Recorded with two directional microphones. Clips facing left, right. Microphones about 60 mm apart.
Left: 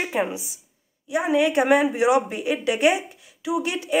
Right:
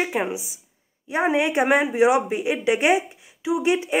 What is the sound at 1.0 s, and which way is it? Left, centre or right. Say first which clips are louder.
Speech: even; right.